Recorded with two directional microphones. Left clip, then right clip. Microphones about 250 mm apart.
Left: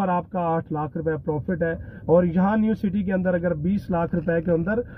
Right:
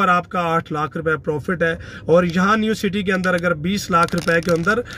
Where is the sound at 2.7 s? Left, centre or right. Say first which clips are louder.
Right 6 dB; centre.